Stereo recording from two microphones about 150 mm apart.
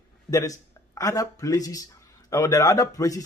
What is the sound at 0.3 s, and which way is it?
Speech, 20° left (ahead or behind).